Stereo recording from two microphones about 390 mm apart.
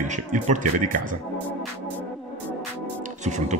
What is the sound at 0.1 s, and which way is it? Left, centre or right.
Speech, centre.